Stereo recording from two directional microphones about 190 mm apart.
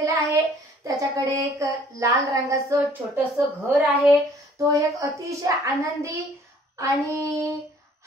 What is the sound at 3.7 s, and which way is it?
A child's voice, 10° right (ahead or behind).